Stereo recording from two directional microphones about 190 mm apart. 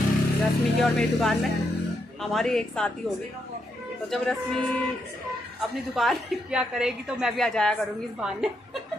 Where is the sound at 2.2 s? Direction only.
Centre (ahead or behind).